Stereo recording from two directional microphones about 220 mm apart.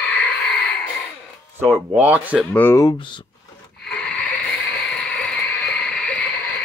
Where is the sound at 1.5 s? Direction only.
10° right (ahead or behind).